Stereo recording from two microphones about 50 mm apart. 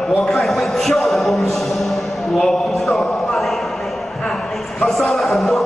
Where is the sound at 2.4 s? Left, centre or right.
Centre.